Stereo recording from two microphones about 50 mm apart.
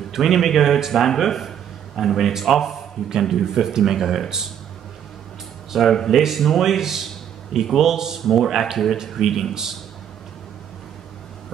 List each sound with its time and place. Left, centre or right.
0.1 s a man's voice: centre
5.7 s a man's voice: centre
8.2 s a man's voice: centre